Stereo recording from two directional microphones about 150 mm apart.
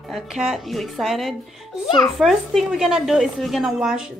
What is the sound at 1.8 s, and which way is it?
Speech, 30° left (ahead or behind).